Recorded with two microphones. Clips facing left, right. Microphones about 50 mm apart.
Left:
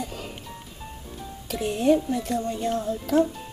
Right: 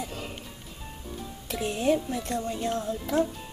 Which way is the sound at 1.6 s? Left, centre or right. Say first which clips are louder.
Left 4 dB; centre.